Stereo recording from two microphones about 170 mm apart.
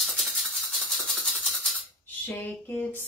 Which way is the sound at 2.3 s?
10° left (ahead or behind).